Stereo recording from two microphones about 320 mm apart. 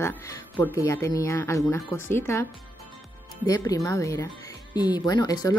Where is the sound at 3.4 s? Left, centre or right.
Centre.